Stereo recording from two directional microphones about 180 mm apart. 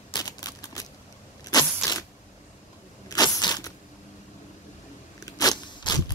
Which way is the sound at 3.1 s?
20° left (ahead or behind).